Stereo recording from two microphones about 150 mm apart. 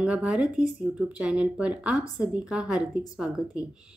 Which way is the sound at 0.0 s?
5° right (ahead or behind).